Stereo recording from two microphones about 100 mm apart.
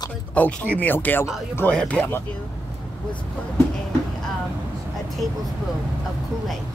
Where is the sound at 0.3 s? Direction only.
10° left (ahead or behind).